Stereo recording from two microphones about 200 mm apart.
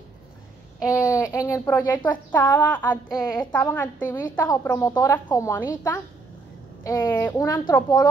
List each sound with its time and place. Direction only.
0.8 s a woman's voice: 15° left (ahead or behind)